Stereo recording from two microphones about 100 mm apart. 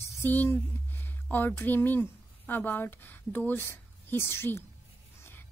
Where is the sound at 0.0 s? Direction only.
20° left (ahead or behind).